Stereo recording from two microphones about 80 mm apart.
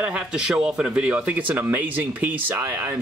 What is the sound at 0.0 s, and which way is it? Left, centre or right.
Speech, centre.